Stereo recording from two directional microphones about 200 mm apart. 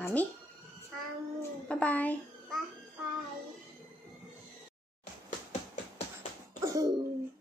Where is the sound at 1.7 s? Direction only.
5° left (ahead or behind).